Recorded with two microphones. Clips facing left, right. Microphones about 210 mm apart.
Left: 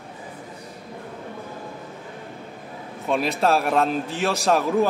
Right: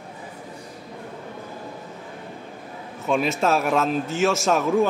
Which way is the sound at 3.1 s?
Centre (ahead or behind).